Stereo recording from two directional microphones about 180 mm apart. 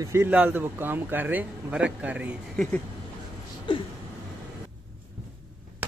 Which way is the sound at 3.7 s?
25° left (ahead or behind).